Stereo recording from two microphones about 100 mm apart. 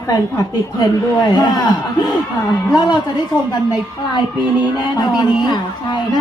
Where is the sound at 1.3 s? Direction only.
40° left (ahead or behind).